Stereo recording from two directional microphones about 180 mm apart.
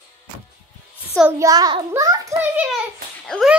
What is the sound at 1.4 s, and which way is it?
A child's voice, 20° right (ahead or behind).